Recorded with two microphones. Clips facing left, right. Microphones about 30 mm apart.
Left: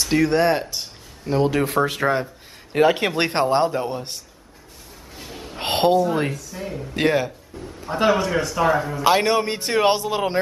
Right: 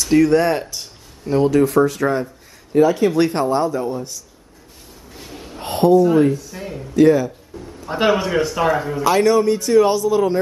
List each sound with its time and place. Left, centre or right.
0.0 s speech: centre
1.7 s a man's voice: left
2.7 s a man's voice: left
5.1 s a sound: centre
5.6 s a sound: left
6.1 s a man's voice: left
6.5 s speech: centre
6.9 s a man's voice: left
7.9 s a man's voice: centre
9.0 s a man's voice: left
9.3 s a man's voice: left